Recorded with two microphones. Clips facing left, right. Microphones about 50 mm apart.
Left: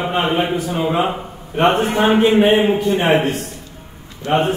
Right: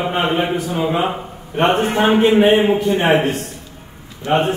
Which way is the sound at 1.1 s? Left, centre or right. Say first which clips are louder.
Even; centre.